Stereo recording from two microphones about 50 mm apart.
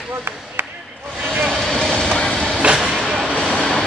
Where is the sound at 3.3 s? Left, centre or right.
Left.